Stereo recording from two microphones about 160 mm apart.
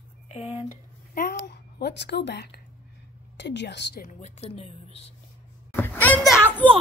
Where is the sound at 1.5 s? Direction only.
90° left.